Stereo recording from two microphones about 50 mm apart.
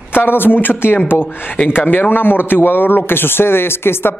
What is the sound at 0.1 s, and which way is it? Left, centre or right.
Speech, left.